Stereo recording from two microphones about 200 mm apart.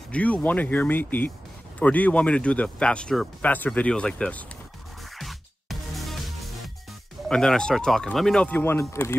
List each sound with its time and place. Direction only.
0.1 s speech: 5° left (ahead or behind)
5.1 s music: centre (ahead or behind)
7.2 s speech: 5° left (ahead or behind)